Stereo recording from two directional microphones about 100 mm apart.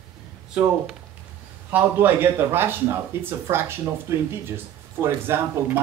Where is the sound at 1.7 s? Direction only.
20° right (ahead or behind).